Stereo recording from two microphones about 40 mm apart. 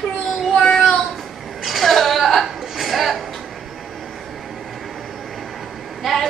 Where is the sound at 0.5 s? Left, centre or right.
Centre.